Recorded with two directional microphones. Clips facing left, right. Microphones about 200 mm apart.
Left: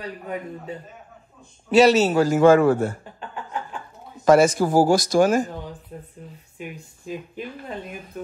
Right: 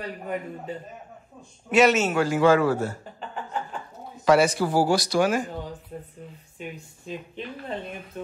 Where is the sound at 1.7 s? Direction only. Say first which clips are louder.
Left 4 dB; 35° left (ahead or behind); by 3.0 s 50° left (ahead or behind).